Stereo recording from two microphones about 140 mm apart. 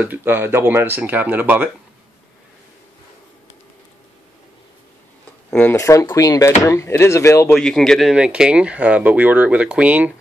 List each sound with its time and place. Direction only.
0.0 s speech: 15° right (ahead or behind)
5.5 s speech: 10° left (ahead or behind)
5.8 s speech: 20° left (ahead or behind)
7.5 s speech: 5° left (ahead or behind)